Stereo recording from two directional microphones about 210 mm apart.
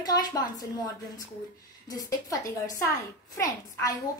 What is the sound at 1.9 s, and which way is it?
A child's voice, 15° left (ahead or behind).